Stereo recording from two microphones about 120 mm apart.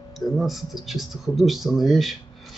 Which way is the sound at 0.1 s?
Centre (ahead or behind).